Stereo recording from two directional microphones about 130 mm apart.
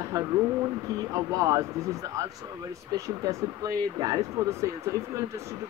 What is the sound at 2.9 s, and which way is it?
Speech, 25° right (ahead or behind).